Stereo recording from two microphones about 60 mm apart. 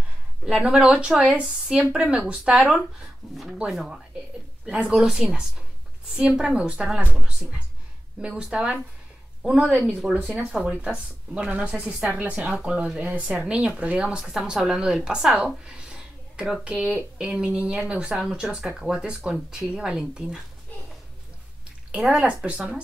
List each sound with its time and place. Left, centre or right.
0.5 s a woman's voice: centre
2.3 s speech: centre
4.6 s a woman's voice: centre
15.0 s a sound: centre
16.7 s a woman's voice: right
17.2 s speech: centre
22.1 s a woman's voice: centre